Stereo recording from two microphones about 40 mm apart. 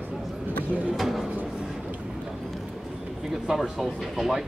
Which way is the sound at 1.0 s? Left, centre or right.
Centre.